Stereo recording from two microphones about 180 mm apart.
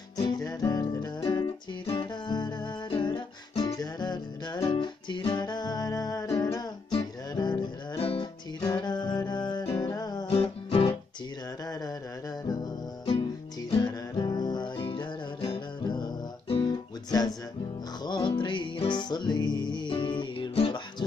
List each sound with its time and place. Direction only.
0.2 s music: 20° left (ahead or behind)
13.7 s music: 25° left (ahead or behind)
18.0 s music: 25° left (ahead or behind)